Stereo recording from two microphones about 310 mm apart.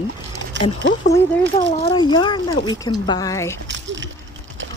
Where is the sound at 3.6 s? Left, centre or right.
Right.